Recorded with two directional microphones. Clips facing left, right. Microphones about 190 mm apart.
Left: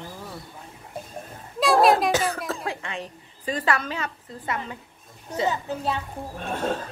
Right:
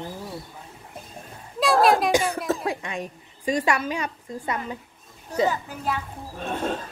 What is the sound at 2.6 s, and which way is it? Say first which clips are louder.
A woman's voice: right 3 dB; 15° right (ahead or behind).